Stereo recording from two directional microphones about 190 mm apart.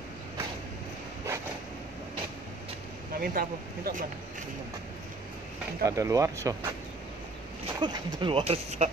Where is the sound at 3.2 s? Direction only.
50° right (ahead or behind).